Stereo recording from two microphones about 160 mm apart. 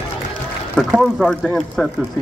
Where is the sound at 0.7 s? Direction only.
Centre (ahead or behind).